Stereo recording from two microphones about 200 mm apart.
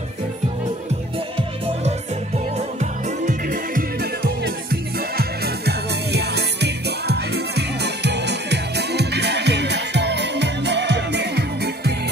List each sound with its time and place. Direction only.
1.9 s music: 35° right (ahead or behind); by 11.9 s 55° right (ahead or behind)